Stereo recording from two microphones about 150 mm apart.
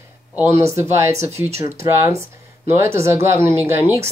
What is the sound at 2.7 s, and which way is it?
Speech, 15° right (ahead or behind).